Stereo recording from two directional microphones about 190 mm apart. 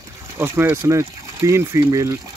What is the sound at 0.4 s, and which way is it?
Speech, 10° right (ahead or behind).